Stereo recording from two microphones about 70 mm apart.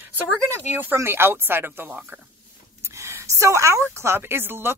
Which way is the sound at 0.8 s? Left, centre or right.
Right.